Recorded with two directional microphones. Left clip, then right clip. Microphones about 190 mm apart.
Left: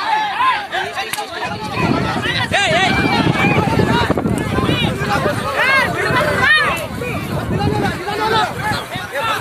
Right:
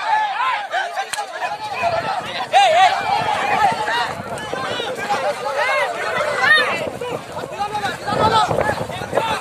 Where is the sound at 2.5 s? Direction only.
55° right (ahead or behind).